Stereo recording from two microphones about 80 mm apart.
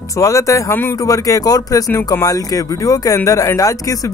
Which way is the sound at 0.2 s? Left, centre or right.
Left.